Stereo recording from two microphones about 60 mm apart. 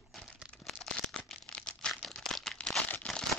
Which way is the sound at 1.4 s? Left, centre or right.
Centre.